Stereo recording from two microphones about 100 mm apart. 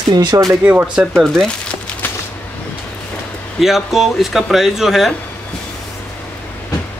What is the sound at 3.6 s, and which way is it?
Speech, 5° right (ahead or behind).